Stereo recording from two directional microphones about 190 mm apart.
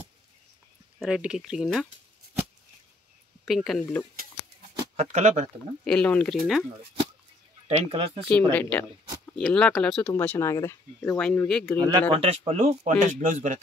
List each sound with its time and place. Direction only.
0.9 s speech: 5° right (ahead or behind)
3.4 s speech: centre (ahead or behind)
4.9 s speech: 35° right (ahead or behind)
5.9 s speech: 5° left (ahead or behind)
7.6 s speech: 30° right (ahead or behind)
8.3 s speech: 10° left (ahead or behind)
12.1 s speech: 30° right (ahead or behind)